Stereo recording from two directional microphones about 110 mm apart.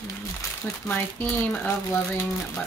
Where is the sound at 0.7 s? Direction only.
20° left (ahead or behind).